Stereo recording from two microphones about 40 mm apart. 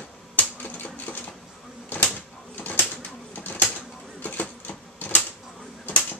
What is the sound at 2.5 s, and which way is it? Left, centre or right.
Pigeon, left.